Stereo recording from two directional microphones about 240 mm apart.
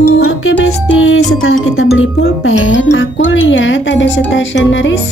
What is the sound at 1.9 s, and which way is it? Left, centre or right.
Speech, left.